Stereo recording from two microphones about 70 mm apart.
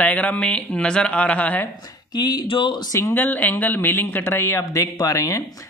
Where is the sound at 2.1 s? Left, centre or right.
Left.